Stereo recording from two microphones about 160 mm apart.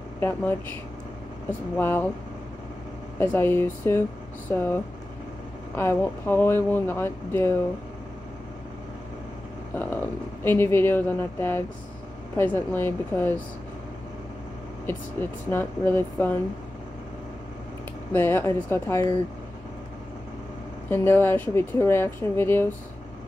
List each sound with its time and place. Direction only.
0.2 s speech: 15° left (ahead or behind)
1.8 s speech: 15° left (ahead or behind)
3.2 s speech: 15° left (ahead or behind)
9.8 s speech: 15° left (ahead or behind)
14.9 s speech: 15° left (ahead or behind)
18.1 s speech: 15° left (ahead or behind)
20.9 s speech: 15° left (ahead or behind)